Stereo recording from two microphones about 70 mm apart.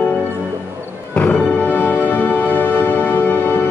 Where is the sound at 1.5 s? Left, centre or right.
Left.